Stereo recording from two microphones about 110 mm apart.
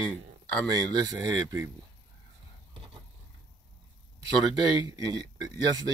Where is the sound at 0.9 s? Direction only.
30° right (ahead or behind).